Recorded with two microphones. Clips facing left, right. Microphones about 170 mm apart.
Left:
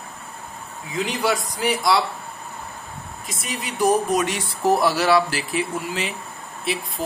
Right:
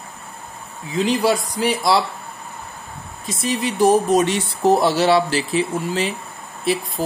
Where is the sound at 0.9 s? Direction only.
25° right (ahead or behind).